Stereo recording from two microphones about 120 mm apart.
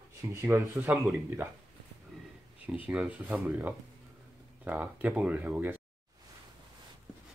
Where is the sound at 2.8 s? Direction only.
10° right (ahead or behind).